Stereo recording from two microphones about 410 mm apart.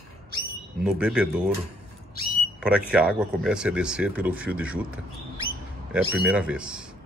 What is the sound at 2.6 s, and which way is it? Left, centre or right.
Speech, centre.